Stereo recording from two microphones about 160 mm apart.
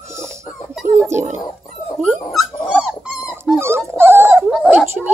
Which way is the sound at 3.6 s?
15° right (ahead or behind).